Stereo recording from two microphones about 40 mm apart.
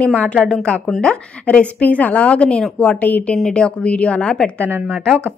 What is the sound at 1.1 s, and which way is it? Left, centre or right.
Speech, centre.